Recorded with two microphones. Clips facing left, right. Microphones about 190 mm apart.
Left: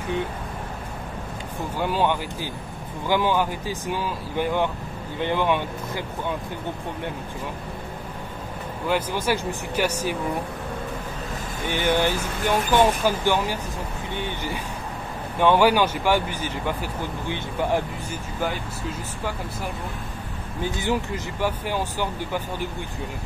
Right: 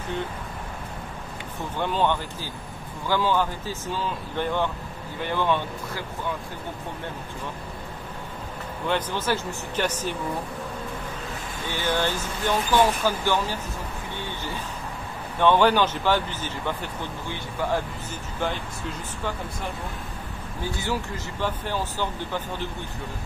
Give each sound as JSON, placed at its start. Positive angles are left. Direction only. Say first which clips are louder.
{"t": 1.8, "sound": "speech", "louder": "left 1 dB", "side_deg": 10}
{"t": 8.8, "sound": "speech", "louder": "left 2 dB", "side_deg": 10}
{"t": 11.6, "sound": "speech", "louder": "left 4 dB", "side_deg": 15}
{"t": 20.6, "sound": "speech", "louder": "left 4 dB", "side_deg": 20}